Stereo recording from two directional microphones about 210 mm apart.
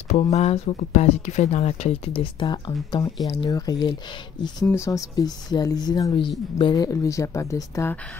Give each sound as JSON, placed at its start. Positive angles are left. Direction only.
{"t": 0.1, "sound": "speech", "side_deg": 30}